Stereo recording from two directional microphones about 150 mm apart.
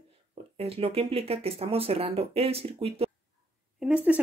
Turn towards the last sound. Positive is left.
turn(degrees=-5)  # may be behind; listen again after turning